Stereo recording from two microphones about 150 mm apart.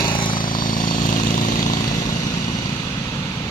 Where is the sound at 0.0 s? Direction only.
35° left (ahead or behind).